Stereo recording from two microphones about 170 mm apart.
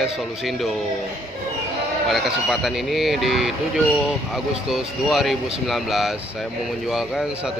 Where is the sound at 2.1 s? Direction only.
Centre (ahead or behind).